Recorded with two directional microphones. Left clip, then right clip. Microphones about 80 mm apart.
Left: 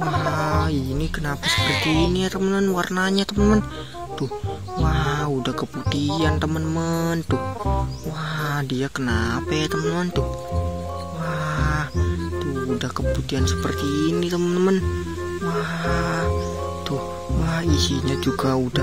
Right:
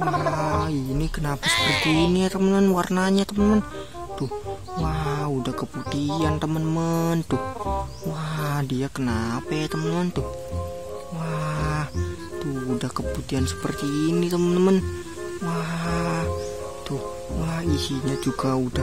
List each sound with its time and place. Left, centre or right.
0.0 s music: centre
1.4 s speech: centre
2.1 s speech: right
2.4 s speech: right
3.0 s speech: right
4.8 s speech: centre
8.4 s speech: right
9.1 s speech: centre
9.8 s speech: right
11.2 s music: centre
13.7 s speech: right
15.5 s music: right
17.5 s speech: centre